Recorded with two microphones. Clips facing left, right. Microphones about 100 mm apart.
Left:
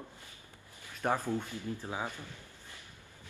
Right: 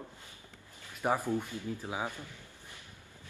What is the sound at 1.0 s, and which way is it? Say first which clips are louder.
A man's voice: right 1 dB; 10° right (ahead or behind).